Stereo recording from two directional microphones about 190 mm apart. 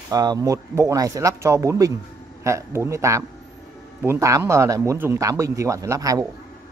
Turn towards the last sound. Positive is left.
turn(degrees=-15)  # may be behind; listen again after turning